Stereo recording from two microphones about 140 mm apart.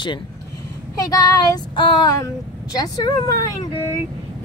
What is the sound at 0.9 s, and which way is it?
Speech, 25° left (ahead or behind).